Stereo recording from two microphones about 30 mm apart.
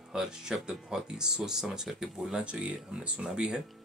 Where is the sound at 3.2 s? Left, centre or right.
Right.